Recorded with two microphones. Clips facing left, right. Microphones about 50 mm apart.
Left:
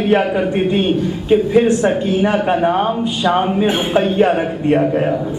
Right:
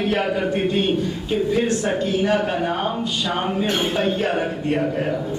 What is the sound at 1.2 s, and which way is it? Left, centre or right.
Speech, left.